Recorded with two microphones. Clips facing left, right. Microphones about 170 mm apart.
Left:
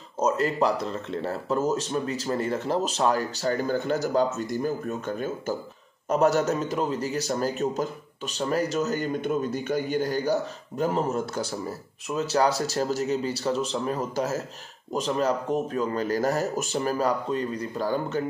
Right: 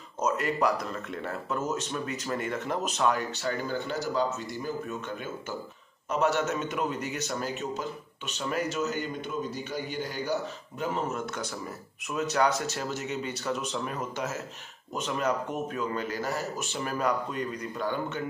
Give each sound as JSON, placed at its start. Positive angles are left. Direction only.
{"t": 0.2, "sound": "speech", "side_deg": 30}